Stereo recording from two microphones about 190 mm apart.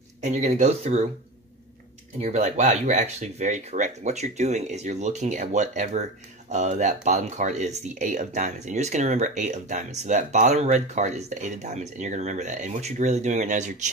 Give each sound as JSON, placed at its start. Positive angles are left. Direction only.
{"t": 0.2, "sound": "speech", "side_deg": -40}
{"t": 2.2, "sound": "speech", "side_deg": -40}